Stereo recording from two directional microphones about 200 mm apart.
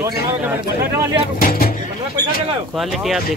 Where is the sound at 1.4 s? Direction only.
45° left (ahead or behind).